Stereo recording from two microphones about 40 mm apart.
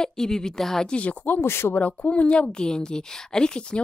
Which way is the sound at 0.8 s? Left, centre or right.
Left.